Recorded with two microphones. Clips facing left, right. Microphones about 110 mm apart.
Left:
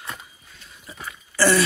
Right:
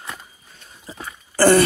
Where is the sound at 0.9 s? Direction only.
30° right (ahead or behind).